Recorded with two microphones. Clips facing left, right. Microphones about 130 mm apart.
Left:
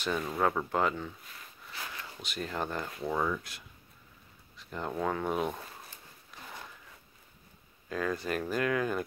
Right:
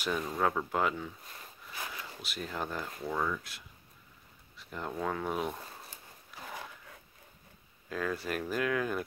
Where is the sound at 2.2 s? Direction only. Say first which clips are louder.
Left 3 dB; 5° right (ahead or behind).